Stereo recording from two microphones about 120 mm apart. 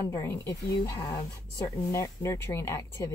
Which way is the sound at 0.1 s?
25° left (ahead or behind).